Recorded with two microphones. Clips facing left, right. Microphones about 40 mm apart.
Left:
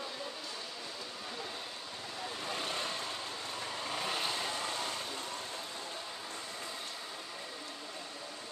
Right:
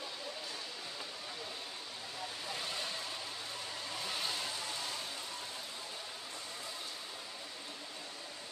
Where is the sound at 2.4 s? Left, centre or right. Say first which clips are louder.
Left 4 dB; left.